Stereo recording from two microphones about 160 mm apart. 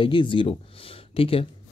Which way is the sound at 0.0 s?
30° left (ahead or behind).